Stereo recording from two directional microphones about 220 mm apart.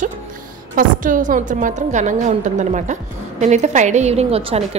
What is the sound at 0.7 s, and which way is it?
A woman's voice, 35° right (ahead or behind).